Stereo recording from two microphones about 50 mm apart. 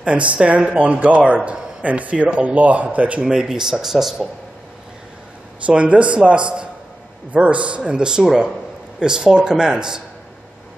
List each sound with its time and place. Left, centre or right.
0.0 s a man's voice: right
3.3 s speech: centre
5.7 s a man's voice: right